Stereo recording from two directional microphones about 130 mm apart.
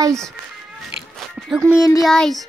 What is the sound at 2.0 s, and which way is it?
Child singing, 5° left (ahead or behind).